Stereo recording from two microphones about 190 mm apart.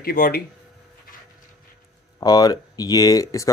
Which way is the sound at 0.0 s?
50° left (ahead or behind).